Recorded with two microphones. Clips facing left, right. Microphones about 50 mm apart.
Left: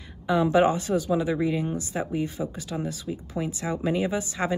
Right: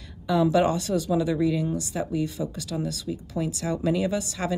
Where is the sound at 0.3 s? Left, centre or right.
Left.